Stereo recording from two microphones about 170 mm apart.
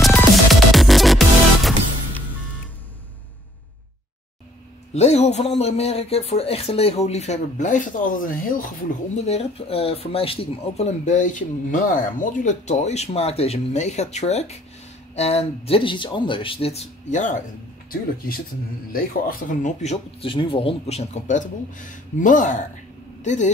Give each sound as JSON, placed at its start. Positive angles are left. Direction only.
{"t": 0.5, "sound": "music", "side_deg": 0}
{"t": 4.9, "sound": "speech", "side_deg": 40}
{"t": 9.2, "sound": "speech", "side_deg": 40}
{"t": 18.9, "sound": "speech", "side_deg": 55}